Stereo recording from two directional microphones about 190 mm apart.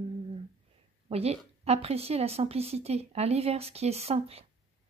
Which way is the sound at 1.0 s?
30° right (ahead or behind).